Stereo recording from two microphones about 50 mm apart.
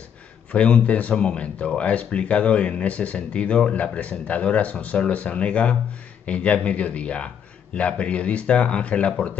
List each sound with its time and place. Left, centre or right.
0.5 s speech: left